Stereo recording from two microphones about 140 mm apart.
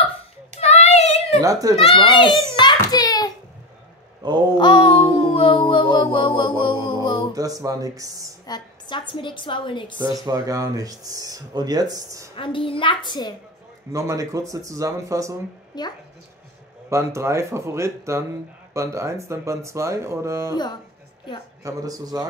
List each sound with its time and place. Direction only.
0.6 s child singing: 50° left (ahead or behind)
1.4 s speech: 25° right (ahead or behind)
1.8 s a woman's voice: 40° left (ahead or behind)
2.6 s a sound: 30° left (ahead or behind)
4.2 s a sound: 35° right (ahead or behind)
4.6 s music: 30° left (ahead or behind)
7.3 s speech: 25° right (ahead or behind)
8.5 s a woman's voice: 30° left (ahead or behind)
10.1 s speech: 25° right (ahead or behind)
12.4 s a woman's voice: 40° left (ahead or behind)
13.9 s speech: 25° right (ahead or behind)
15.7 s speech: 30° left (ahead or behind)
16.9 s speech: 20° right (ahead or behind)
21.6 s speech: 25° right (ahead or behind)